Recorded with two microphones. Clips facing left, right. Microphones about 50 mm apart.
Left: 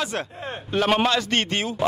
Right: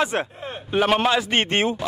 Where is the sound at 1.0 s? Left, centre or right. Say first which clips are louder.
Right 2 dB; centre.